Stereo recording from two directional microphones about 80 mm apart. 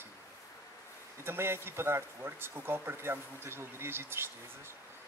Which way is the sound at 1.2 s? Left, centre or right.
Right.